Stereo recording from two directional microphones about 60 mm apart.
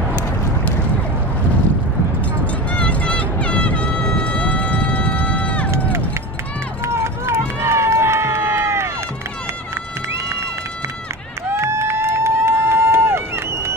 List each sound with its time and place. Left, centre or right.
2.7 s vehicle: left
6.9 s run: right
11.5 s a sound: right
12.2 s run: right